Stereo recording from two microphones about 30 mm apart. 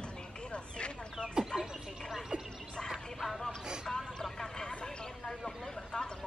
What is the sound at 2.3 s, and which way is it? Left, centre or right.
Music, right.